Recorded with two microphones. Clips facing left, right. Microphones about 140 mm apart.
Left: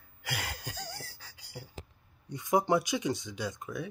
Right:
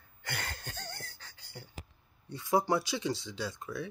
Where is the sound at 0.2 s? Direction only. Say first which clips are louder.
Left 2 dB; 10° left (ahead or behind).